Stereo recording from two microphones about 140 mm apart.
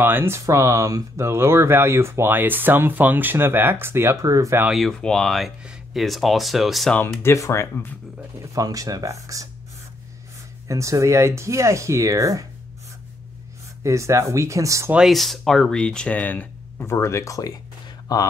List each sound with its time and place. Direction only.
0.0 s speech: 15° right (ahead or behind)
4.6 s speech: centre (ahead or behind)
7.0 s speech: 15° left (ahead or behind)
8.4 s speech: 25° right (ahead or behind)
10.7 s speech: 20° right (ahead or behind)
13.8 s speech: 20° right (ahead or behind)
14.9 s speech: 5° right (ahead or behind); by 18.3 s 25° left (ahead or behind)